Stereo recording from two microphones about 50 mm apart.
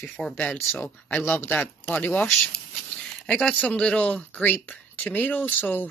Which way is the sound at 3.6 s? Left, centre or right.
Left.